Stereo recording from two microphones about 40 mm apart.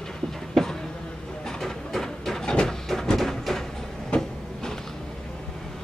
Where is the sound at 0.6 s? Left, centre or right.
Centre.